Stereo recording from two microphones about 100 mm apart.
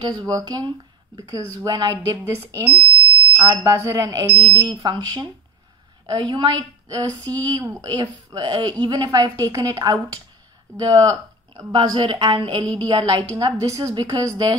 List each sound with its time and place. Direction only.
0.0 s speech: 45° right (ahead or behind)
4.4 s a woman's voice: 50° right (ahead or behind)
13.7 s speech: 30° right (ahead or behind)